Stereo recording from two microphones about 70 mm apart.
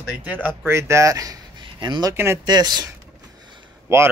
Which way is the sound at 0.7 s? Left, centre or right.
Right.